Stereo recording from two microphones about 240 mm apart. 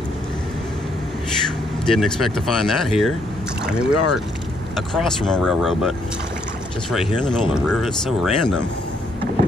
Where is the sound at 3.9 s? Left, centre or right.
Left.